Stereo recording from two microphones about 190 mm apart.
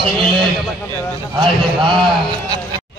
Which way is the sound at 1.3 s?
25° right (ahead or behind).